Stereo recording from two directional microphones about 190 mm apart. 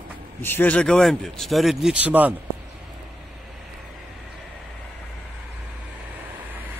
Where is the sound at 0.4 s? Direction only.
10° left (ahead or behind); by 2.3 s 5° right (ahead or behind).